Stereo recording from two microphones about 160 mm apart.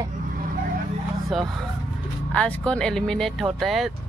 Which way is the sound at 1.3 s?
Centre (ahead or behind).